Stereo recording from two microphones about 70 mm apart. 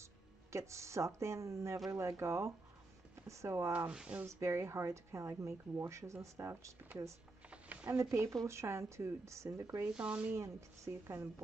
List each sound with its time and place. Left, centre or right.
0.0 s speech: right
3.9 s speech: centre
4.3 s speech: right
7.4 s a sound: centre
7.8 s speech: right
9.8 s speech: centre
10.9 s speech: right